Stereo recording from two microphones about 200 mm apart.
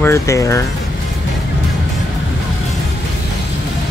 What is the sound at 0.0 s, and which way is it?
Speech, 15° left (ahead or behind).